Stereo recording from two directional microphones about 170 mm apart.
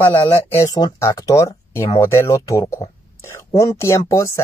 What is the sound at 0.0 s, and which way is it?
Speech, 10° left (ahead or behind).